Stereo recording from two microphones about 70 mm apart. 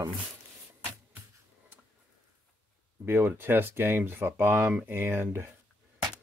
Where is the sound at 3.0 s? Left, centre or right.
Right.